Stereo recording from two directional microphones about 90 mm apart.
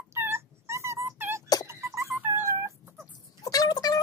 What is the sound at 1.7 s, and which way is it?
Music, 30° right (ahead or behind).